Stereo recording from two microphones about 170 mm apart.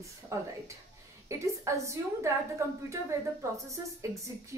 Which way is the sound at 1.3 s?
15° right (ahead or behind).